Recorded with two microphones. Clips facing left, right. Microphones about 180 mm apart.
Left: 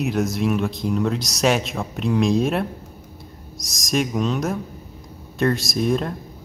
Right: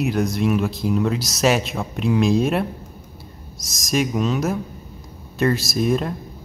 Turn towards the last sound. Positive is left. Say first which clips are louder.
# right 1 dB
turn(degrees=-5)  # may be behind; listen again after turning